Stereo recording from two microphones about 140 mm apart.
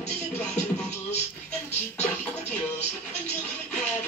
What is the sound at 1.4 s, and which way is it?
Music, 10° left (ahead or behind).